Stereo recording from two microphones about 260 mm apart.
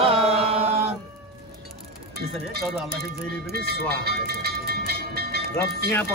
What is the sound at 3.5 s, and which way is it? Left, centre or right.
Speech, right.